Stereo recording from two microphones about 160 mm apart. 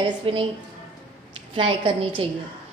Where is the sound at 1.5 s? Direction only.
30° right (ahead or behind).